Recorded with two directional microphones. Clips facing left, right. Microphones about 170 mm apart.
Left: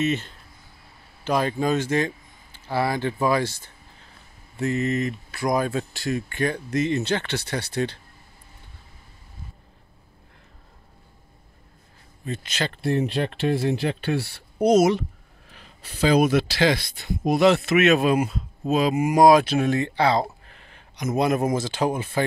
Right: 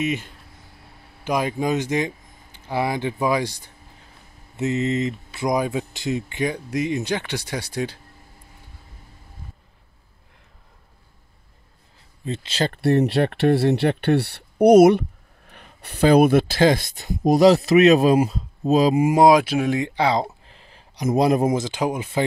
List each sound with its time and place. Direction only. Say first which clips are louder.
0.0 s speech: left 1 dB; 10° right (ahead or behind)
12.3 s speech: right 4 dB; 30° right (ahead or behind)
12.6 s speech: right 5 dB; 60° right (ahead or behind); by 19.3 s 25° right (ahead or behind)
19.3 s speech: even; 10° right (ahead or behind)
20.4 s a sound: right 1 dB; 30° right (ahead or behind)
21.5 s speech: right 1 dB; 15° right (ahead or behind)